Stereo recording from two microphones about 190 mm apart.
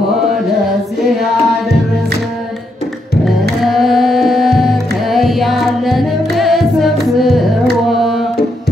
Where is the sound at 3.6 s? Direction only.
Centre (ahead or behind).